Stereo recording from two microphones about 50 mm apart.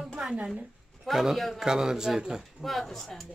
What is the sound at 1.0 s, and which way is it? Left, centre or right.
Speech, centre.